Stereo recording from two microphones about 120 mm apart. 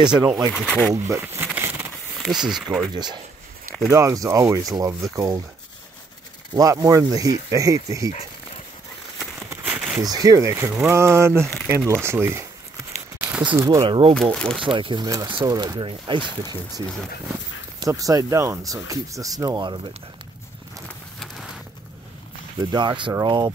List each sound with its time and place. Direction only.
0.5 s speech: centre (ahead or behind)
0.9 s a sound: 25° right (ahead or behind)
2.2 s speech: 5° right (ahead or behind)
2.9 s speech: 35° right (ahead or behind)
6.5 s speech: 30° right (ahead or behind)
9.5 s a sound: 15° right (ahead or behind)
10.0 s speech: 30° right (ahead or behind)
13.2 s a sound: 10° right (ahead or behind)
13.6 s speech: 25° right (ahead or behind)
13.8 s speech: 45° right (ahead or behind)
14.2 s speech: 5° left (ahead or behind)
14.6 s speech: 45° right (ahead or behind)
17.8 s speech: 30° right (ahead or behind)
22.6 s speech: 35° right (ahead or behind)